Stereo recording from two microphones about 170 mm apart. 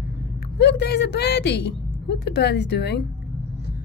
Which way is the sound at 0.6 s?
80° left.